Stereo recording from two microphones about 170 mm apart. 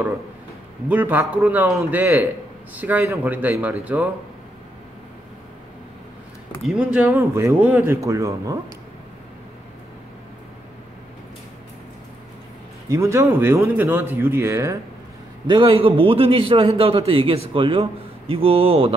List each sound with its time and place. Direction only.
0.8 s speech: 10° right (ahead or behind)
6.6 s speech: 5° right (ahead or behind)
12.9 s speech: 15° right (ahead or behind)
15.4 s a man's voice: 30° right (ahead or behind)